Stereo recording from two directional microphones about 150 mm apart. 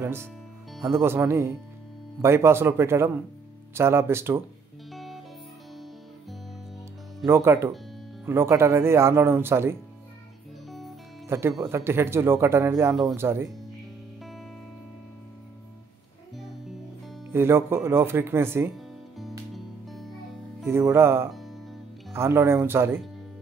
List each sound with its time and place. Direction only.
0.0 s speech: 15° right (ahead or behind)
4.9 s music: centre (ahead or behind)
7.2 s speech: 15° right (ahead or behind)
11.2 s speech: 15° right (ahead or behind)
17.3 s speech: 15° right (ahead or behind)
19.5 s music: centre (ahead or behind)
20.6 s speech: 15° right (ahead or behind)
21.3 s music: centre (ahead or behind)
22.1 s speech: 15° right (ahead or behind)